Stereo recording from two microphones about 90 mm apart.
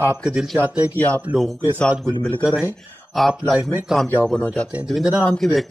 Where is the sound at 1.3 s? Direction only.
Centre (ahead or behind).